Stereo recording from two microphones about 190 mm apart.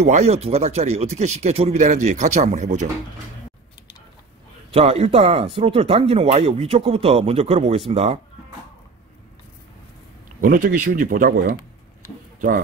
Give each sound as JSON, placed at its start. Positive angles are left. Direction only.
{"t": 0.0, "sound": "speech", "side_deg": -35}
{"t": 4.7, "sound": "speech", "side_deg": -35}
{"t": 10.4, "sound": "speech", "side_deg": -45}